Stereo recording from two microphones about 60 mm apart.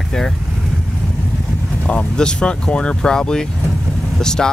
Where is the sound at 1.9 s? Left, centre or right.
Centre.